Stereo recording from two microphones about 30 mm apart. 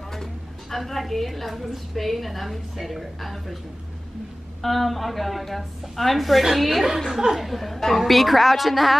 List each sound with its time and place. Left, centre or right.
0.1 s a woman's voice: centre
4.6 s a woman's voice: centre
7.1 s speech: centre
7.3 s a woman's voice: centre